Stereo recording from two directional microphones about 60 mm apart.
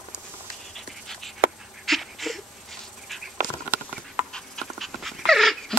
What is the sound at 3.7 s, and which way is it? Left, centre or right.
Horse, right.